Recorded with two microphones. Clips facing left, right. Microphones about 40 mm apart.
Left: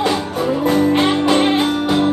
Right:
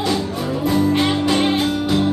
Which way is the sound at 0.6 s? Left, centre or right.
Left.